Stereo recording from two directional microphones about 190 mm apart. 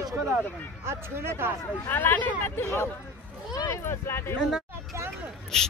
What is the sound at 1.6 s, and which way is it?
Speech, 10° left (ahead or behind).